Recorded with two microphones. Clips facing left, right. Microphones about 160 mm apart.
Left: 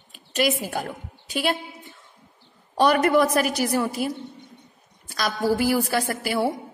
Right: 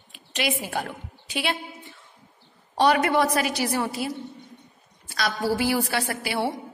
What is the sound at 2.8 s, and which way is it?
A woman's voice, 45° left (ahead or behind).